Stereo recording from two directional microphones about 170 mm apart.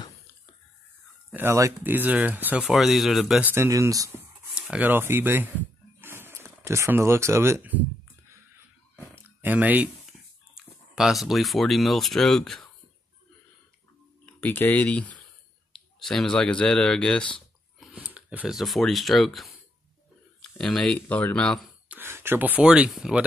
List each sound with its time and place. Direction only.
1.3 s speech: 15° right (ahead or behind)
4.6 s speech: 5° right (ahead or behind)
5.9 s a sound: 15° right (ahead or behind)
9.1 s a sound: 10° right (ahead or behind)
10.5 s speech: centre (ahead or behind)
14.2 s speech: 10° left (ahead or behind)
21.8 s speech: 10° right (ahead or behind)